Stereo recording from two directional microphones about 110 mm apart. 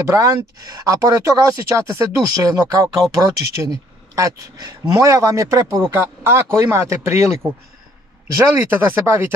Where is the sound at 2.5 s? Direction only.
30° right (ahead or behind).